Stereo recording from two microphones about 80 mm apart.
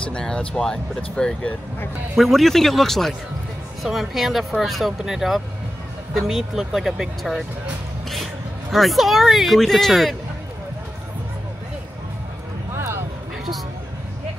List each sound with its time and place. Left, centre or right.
0.1 s speech: centre
12.7 s music: right